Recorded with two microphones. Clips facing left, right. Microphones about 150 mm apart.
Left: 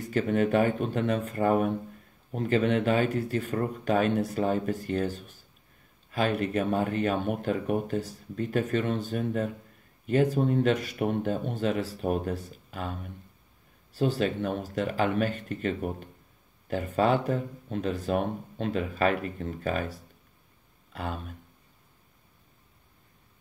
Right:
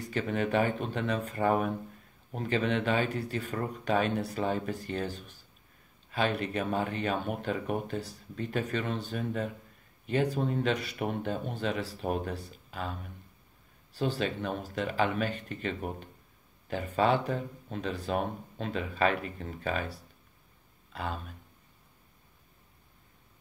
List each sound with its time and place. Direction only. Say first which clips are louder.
0.0 s speech: left 5 dB; 45° left (ahead or behind)